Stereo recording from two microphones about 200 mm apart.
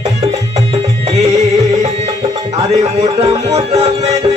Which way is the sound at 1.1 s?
30° right (ahead or behind).